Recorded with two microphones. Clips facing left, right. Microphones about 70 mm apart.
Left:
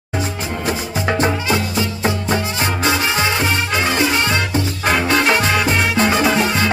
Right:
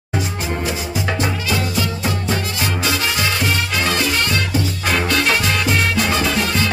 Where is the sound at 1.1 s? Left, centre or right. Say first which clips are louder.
Left 6 dB; left.